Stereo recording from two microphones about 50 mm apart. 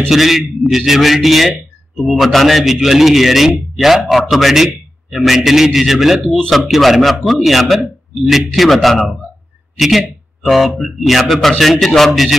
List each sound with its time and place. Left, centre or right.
0.1 s a man's voice: centre